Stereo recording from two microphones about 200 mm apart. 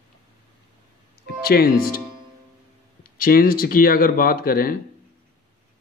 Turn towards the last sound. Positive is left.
turn(degrees=45)  # may be behind; listen again after turning